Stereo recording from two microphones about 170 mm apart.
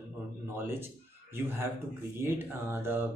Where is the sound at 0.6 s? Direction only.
15° right (ahead or behind).